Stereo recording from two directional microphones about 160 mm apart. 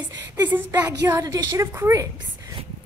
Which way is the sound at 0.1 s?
10° right (ahead or behind).